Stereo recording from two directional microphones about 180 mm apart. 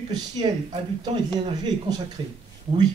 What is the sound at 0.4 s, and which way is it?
Speech, 30° right (ahead or behind).